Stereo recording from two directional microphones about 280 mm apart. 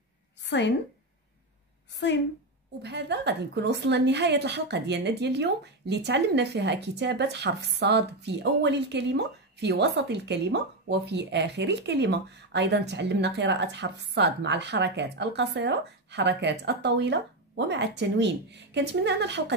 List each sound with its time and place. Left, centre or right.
0.4 s a woman's voice: left
2.8 s a woman's voice: right